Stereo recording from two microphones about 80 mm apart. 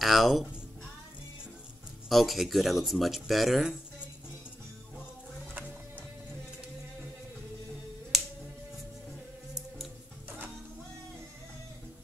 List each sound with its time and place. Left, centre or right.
0.0 s speech: centre
2.0 s speech: centre
5.5 s music: right
8.1 s finger snapping: centre